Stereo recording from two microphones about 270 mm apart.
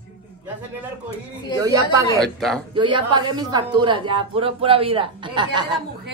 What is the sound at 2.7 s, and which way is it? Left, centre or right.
Speech, centre.